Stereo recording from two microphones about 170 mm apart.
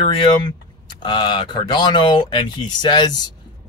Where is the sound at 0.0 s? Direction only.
30° left (ahead or behind).